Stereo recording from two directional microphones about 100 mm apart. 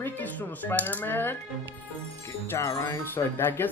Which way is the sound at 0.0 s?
20° left (ahead or behind).